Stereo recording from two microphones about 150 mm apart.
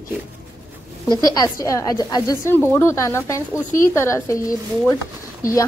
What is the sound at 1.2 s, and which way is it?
A woman's voice, 20° left (ahead or behind).